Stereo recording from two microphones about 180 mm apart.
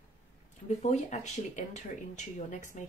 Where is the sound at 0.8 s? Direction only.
40° left (ahead or behind).